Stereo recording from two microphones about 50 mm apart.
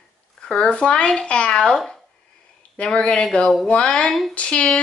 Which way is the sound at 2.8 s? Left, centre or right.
Centre.